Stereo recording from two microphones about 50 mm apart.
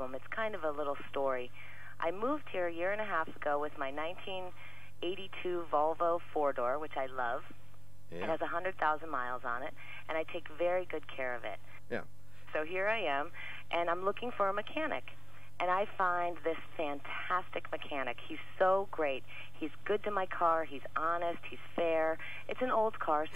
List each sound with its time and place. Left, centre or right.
0.0 s speech: centre
5.9 s speech: centre
6.1 s speech: centre